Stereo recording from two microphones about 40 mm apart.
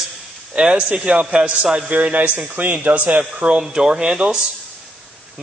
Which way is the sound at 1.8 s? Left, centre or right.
Right.